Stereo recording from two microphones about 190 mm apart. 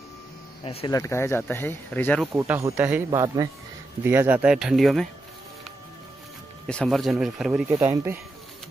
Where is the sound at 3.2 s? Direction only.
20° right (ahead or behind).